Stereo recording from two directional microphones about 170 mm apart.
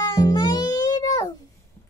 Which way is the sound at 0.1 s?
20° left (ahead or behind).